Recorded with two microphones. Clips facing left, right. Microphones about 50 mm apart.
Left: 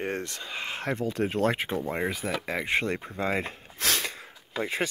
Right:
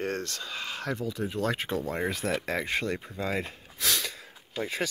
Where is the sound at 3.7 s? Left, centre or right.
Left.